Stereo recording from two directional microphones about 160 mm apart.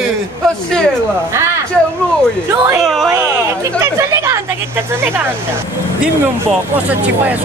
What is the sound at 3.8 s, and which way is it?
Speech, 20° right (ahead or behind).